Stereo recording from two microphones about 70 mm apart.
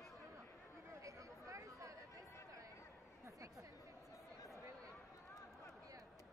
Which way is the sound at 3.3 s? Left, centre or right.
Right.